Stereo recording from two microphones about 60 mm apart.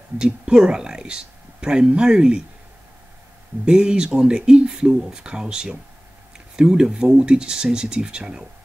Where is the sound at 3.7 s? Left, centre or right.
Centre.